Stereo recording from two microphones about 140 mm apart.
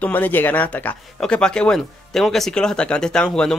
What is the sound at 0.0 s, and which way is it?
A man's voice, 15° left (ahead or behind).